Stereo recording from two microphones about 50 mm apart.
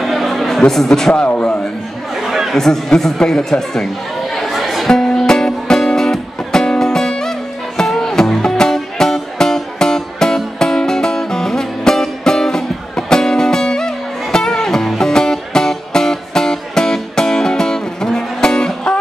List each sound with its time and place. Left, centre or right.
0.0 s a sound: centre
1.2 s a man's voice: left
2.2 s chatter: centre
2.5 s speech: centre
4.4 s music: centre